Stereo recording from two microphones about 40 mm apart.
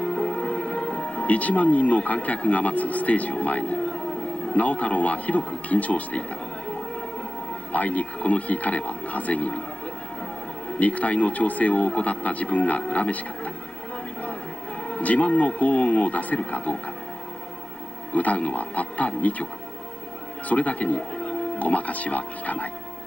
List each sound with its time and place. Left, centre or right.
0.0 s music: left
1.2 s speech: left
7.7 s speech: left
10.8 s speech: left
14.9 s speech: left
18.1 s speech: left
20.4 s speech: left